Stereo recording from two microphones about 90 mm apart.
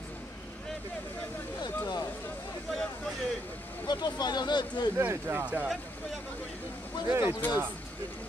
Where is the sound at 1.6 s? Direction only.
50° left (ahead or behind).